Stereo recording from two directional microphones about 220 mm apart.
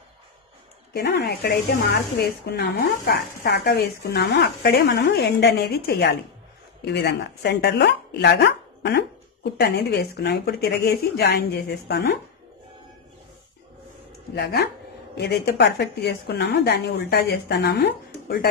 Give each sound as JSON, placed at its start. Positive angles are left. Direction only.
{"t": 0.9, "sound": "speech", "side_deg": 45}
{"t": 14.3, "sound": "speech", "side_deg": 50}